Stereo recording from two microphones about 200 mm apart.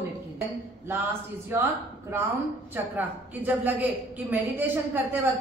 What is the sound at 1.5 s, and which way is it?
A woman's voice, 10° right (ahead or behind).